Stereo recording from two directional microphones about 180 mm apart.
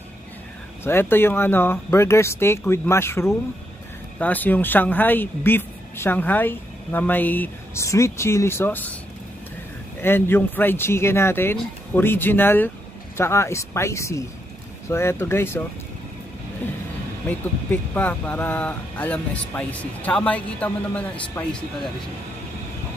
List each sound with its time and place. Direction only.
0.8 s speech: 10° left (ahead or behind)
10.0 s speech: 10° left (ahead or behind)
17.6 s speech: 10° left (ahead or behind)